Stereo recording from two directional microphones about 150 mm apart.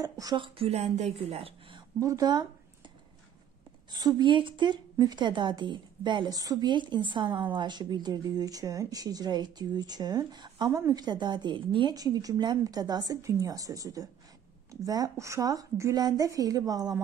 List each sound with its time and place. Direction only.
0.0 s speech: 25° right (ahead or behind)
0.6 s speech: 45° right (ahead or behind)
2.0 s speech: 25° right (ahead or behind)
3.9 s a woman's voice: 30° right (ahead or behind)